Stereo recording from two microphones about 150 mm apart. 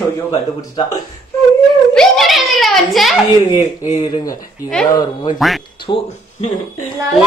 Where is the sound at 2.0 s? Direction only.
Centre (ahead or behind).